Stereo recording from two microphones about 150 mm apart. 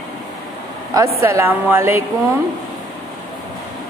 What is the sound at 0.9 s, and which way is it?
A woman's voice, 20° right (ahead or behind).